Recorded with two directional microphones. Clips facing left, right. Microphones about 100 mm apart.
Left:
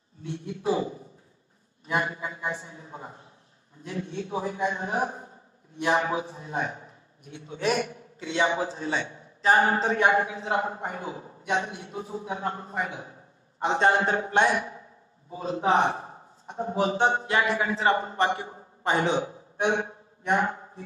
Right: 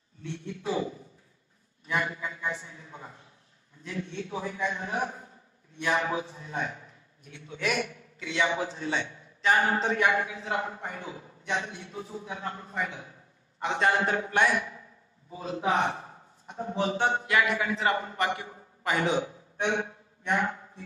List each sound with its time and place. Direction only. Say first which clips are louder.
0.2 s a man's voice: left 4 dB; 35° left (ahead or behind)